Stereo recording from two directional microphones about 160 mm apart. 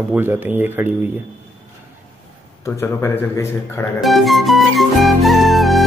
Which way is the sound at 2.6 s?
15° left (ahead or behind).